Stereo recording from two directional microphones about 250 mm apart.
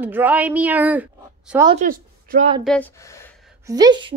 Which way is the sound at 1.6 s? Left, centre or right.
Right.